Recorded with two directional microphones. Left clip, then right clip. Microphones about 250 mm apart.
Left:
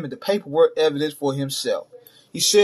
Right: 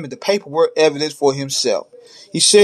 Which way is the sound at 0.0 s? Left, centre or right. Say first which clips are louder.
Right 5 dB; right.